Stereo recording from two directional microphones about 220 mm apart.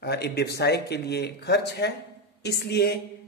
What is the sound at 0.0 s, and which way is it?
A man's voice, 45° left (ahead or behind).